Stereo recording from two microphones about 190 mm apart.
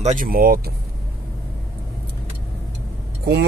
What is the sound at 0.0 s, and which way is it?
Speech, 45° right (ahead or behind).